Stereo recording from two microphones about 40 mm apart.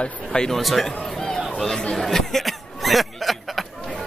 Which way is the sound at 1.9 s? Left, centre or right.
Centre.